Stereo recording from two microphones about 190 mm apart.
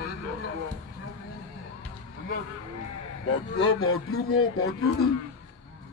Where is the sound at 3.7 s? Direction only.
90° left.